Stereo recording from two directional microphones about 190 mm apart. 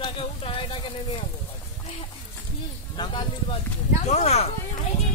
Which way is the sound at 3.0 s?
25° left (ahead or behind).